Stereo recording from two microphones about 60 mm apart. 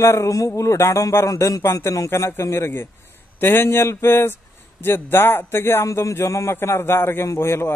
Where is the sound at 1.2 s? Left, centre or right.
Left.